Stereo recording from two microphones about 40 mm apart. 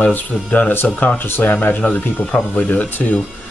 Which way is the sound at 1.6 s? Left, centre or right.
Left.